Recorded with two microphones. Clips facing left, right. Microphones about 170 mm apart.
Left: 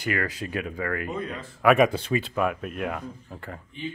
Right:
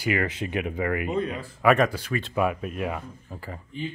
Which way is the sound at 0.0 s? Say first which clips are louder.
Right 2 dB; 20° right (ahead or behind).